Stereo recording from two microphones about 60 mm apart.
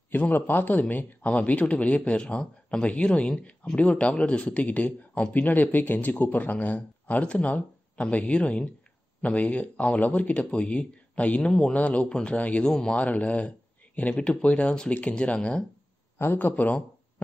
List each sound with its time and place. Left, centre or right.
0.1 s speech: left; by 15.6 s centre
16.2 s speech: left